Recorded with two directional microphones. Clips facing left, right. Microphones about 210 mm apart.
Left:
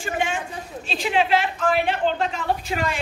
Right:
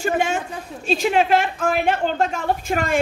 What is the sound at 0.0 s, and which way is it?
A man's voice, 40° right (ahead or behind).